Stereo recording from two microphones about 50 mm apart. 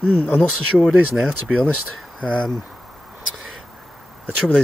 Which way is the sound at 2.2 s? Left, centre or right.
Left.